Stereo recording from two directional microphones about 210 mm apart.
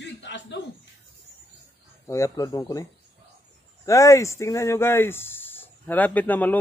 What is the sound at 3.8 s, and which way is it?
Speech, 15° left (ahead or behind).